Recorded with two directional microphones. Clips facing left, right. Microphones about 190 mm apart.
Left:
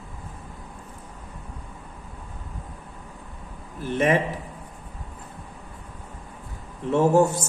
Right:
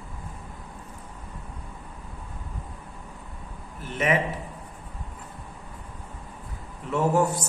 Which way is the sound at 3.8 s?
30° left (ahead or behind).